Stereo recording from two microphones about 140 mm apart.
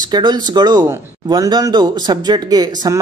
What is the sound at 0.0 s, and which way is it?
Speech, 30° right (ahead or behind).